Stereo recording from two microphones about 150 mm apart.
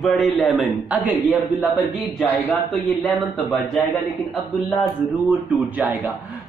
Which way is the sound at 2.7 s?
Centre (ahead or behind).